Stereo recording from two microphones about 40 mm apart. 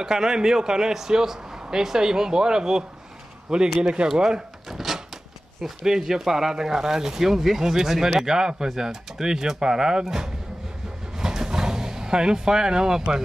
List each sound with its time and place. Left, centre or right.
0.0 s a man's voice: centre
4.7 s door: centre
5.6 s speech: centre
11.1 s vehicle: centre